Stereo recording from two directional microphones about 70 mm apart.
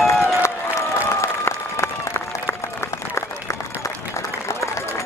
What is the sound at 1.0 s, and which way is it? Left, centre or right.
Applause, left.